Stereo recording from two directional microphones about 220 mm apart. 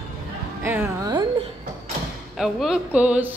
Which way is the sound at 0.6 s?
10° right (ahead or behind).